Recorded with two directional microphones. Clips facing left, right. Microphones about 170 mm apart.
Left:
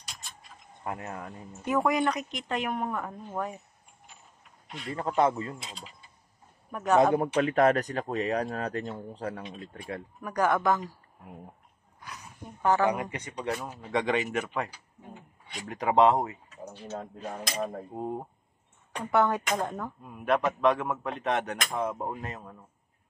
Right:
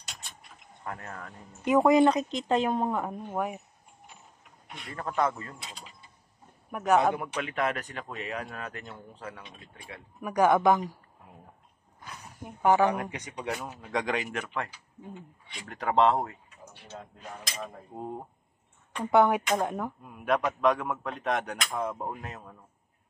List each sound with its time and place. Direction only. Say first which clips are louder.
0.8 s speech: left 3 dB; 15° left (ahead or behind)
1.6 s speech: right 6 dB; 20° right (ahead or behind)
3.0 s speech: right 3 dB; 20° right (ahead or behind)
4.8 s speech: left 3 dB; 20° left (ahead or behind)
6.7 s a man's voice: right 1 dB; centre (ahead or behind)
7.2 s speech: left 8 dB; 40° left (ahead or behind)
10.2 s speech: right 4 dB; 15° right (ahead or behind)
12.4 s speech: right 2 dB; 15° right (ahead or behind)
13.0 s speech: left 2 dB; centre (ahead or behind)
13.7 s speech: left 4 dB; 5° left (ahead or behind)
17.4 s speech: left 7 dB; 35° left (ahead or behind)
17.9 s speech: left 1 dB; 5° left (ahead or behind)
19.0 s speech: right 3 dB; 15° right (ahead or behind)
20.0 s speech: left 2 dB; centre (ahead or behind)